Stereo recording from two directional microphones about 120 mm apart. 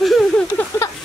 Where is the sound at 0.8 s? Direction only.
25° left (ahead or behind).